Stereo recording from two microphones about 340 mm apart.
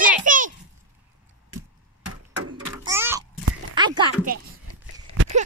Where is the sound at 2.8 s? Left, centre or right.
Centre.